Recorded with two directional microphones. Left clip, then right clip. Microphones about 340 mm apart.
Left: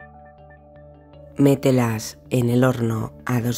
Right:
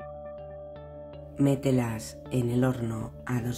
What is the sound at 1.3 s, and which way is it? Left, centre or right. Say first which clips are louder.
Speech: left 9 dB; left.